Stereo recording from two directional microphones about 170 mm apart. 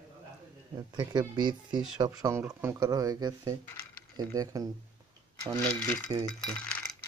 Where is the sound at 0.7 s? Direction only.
25° right (ahead or behind).